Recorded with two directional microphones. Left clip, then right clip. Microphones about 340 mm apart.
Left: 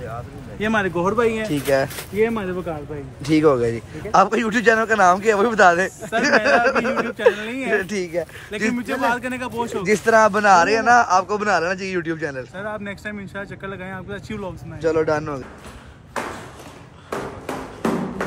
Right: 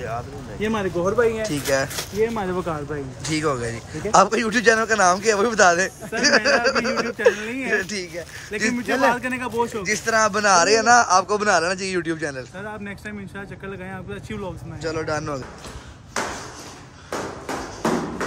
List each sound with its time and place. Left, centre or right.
0.6 s speech: centre
1.0 s speech: left
1.4 s speech: centre
8.8 s a man's voice: right
9.1 s speech: centre